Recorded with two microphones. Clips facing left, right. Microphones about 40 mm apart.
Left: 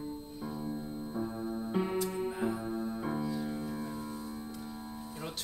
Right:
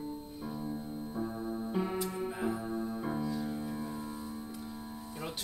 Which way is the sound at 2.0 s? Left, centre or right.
Centre.